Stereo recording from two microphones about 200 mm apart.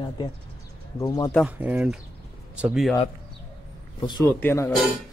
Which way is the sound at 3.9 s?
20° left (ahead or behind).